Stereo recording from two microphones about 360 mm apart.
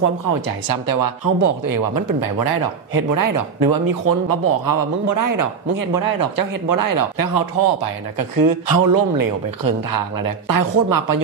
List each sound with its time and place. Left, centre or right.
0.0 s speech: right
4.3 s a man's voice: right